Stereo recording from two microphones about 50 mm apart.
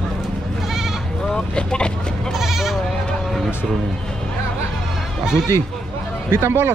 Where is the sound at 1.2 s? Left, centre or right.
Centre.